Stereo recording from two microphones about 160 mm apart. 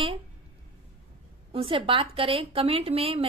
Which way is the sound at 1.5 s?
35° right (ahead or behind).